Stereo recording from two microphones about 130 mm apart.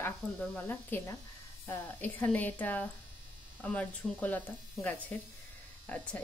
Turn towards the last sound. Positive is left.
turn(degrees=10)  # may be behind; listen again after turning